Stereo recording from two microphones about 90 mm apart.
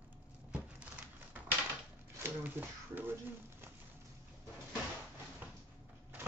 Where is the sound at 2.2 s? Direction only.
20° right (ahead or behind).